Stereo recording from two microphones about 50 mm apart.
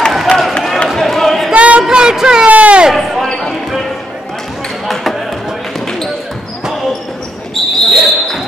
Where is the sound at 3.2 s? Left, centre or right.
Centre.